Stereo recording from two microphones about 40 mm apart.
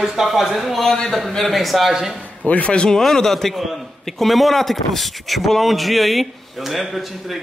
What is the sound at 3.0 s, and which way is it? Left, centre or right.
A man's voice, centre.